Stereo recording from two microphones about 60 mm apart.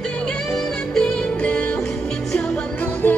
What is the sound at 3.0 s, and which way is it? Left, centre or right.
Music, left.